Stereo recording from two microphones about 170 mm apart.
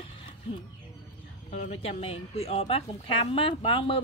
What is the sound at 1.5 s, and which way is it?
Speech, 40° left (ahead or behind).